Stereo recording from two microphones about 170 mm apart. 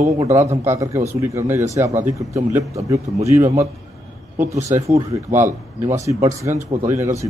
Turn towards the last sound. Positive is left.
turn(degrees=-15)  # may be behind; listen again after turning